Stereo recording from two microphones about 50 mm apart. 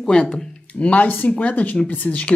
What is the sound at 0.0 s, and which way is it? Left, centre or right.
Speech, centre.